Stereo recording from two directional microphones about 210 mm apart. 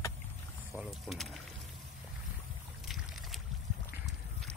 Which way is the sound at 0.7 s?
5° right (ahead or behind).